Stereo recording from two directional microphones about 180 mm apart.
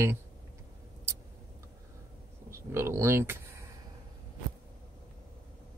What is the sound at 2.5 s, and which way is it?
Speech, 15° right (ahead or behind).